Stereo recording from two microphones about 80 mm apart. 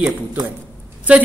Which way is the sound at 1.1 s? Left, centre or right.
Centre.